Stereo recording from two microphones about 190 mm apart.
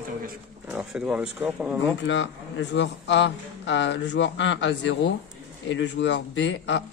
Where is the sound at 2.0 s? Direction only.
75° left (ahead or behind).